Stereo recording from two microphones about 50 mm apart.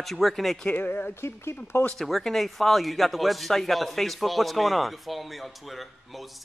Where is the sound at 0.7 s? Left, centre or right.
Left.